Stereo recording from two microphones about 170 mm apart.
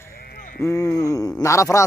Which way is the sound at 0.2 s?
55° left (ahead or behind).